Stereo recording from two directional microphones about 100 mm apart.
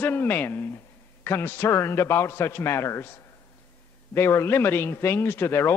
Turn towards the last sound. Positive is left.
turn(degrees=25)  # may be behind; listen again after turning